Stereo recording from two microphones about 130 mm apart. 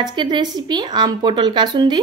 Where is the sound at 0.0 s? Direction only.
35° right (ahead or behind).